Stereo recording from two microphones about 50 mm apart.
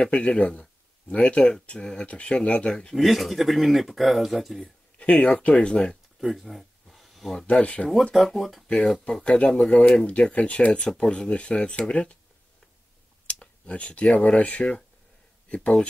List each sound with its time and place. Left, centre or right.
0.0 s speech: left
2.9 s speech: centre
4.9 s speech: left
6.1 s a sound: centre
7.6 s speech: left
8.1 s speech: centre
8.6 s speech: centre
13.3 s speech: left